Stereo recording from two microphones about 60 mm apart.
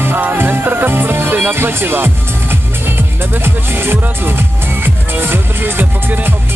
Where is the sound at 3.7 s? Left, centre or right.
Right.